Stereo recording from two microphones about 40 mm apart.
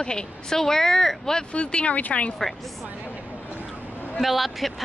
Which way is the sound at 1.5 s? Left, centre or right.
Left.